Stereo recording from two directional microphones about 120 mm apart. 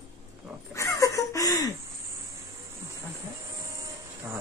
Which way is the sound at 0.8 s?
25° left (ahead or behind).